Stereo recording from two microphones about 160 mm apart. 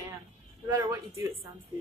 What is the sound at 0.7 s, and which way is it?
Speech, 20° right (ahead or behind).